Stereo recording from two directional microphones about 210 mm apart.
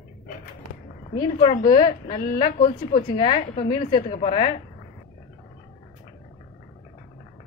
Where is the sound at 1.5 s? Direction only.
35° left (ahead or behind).